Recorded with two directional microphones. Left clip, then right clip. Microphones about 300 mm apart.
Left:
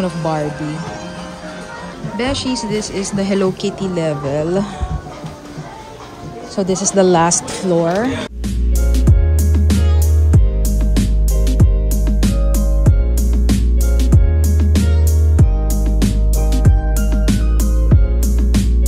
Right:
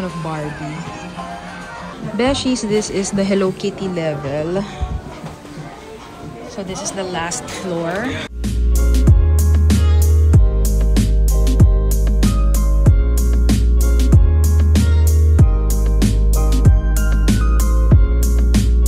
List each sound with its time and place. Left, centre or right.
2.1 s speech: centre
6.5 s speech: centre
7.8 s music: centre